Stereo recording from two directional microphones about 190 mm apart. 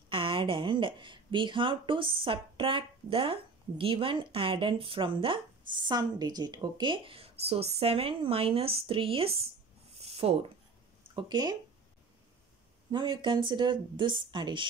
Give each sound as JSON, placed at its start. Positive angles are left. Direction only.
{"t": 0.1, "sound": "speech", "side_deg": -25}
{"t": 9.9, "sound": "a sound", "side_deg": -30}
{"t": 11.1, "sound": "speech", "side_deg": -20}
{"t": 12.9, "sound": "speech", "side_deg": -25}